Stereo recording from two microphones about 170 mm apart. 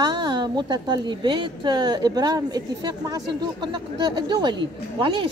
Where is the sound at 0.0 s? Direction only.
25° right (ahead or behind).